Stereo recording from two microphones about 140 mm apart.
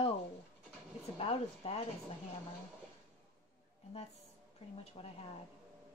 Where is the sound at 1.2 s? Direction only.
45° left (ahead or behind).